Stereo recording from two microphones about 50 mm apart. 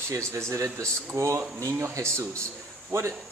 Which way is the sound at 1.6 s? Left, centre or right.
Right.